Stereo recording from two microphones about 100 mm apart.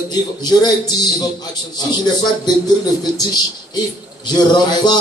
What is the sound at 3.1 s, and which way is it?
A man's voice, 40° left (ahead or behind).